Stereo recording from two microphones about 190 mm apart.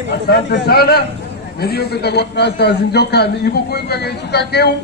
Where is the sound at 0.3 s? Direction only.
55° left (ahead or behind).